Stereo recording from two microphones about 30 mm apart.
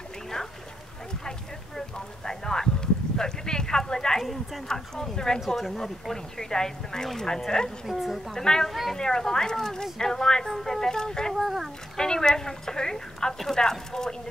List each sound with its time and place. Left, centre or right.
2.2 s a sound: centre
4.2 s a sound: centre
4.6 s a woman's voice: left
7.8 s speech: centre
8.5 s a woman's voice: left
11.3 s speech: centre
12.0 s a woman's voice: left